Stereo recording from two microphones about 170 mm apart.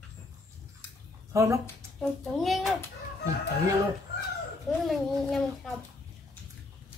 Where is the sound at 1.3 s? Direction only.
15° right (ahead or behind).